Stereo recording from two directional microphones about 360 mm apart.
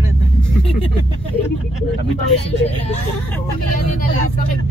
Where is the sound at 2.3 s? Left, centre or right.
Left.